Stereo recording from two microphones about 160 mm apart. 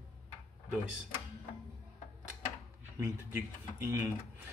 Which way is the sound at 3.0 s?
15° right (ahead or behind).